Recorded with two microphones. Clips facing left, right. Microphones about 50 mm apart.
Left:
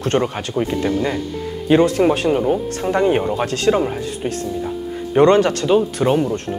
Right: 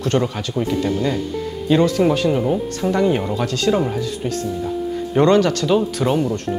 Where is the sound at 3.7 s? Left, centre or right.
Left.